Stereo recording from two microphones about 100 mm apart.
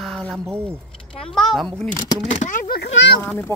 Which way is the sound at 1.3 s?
5° left (ahead or behind).